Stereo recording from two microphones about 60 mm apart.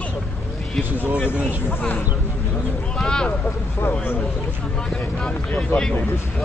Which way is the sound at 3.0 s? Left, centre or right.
Centre.